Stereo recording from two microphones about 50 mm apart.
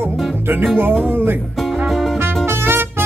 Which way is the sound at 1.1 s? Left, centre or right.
Right.